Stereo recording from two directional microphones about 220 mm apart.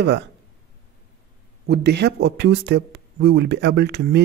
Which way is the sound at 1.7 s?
50° right (ahead or behind).